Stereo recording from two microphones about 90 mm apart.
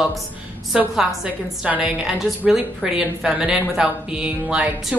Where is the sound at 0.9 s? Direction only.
10° right (ahead or behind).